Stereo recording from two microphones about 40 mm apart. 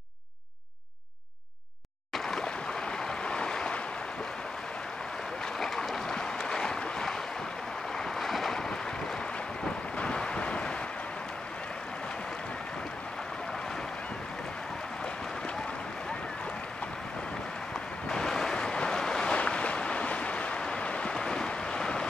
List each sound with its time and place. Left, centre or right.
2.1 s a sound: centre
2.4 s boat: left
5.6 s a sound: centre
6.3 s boat: centre
9.9 s wind noise: left
18.0 s waves: centre
19.3 s boat: left
21.1 s boat: centre